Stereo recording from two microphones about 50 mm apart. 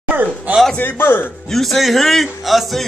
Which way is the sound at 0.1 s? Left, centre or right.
Right.